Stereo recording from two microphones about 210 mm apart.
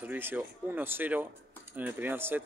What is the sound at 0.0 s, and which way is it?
Speech, 10° right (ahead or behind).